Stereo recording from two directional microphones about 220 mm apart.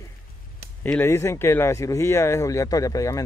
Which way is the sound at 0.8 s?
10° left (ahead or behind).